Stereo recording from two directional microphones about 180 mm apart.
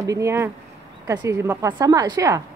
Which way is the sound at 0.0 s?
15° right (ahead or behind).